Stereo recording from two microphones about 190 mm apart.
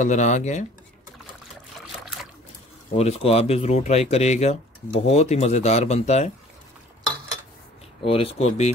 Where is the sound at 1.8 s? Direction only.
Centre (ahead or behind).